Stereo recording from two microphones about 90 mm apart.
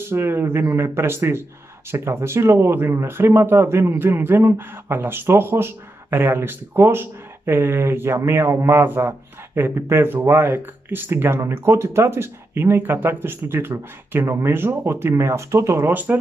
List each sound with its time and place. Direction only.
0.1 s speech: 25° right (ahead or behind)
15.9 s speech: 20° right (ahead or behind)